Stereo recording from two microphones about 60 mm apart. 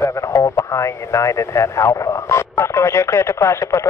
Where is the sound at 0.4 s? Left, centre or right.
Left.